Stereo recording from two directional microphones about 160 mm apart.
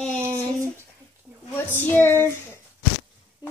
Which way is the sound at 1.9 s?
15° left (ahead or behind).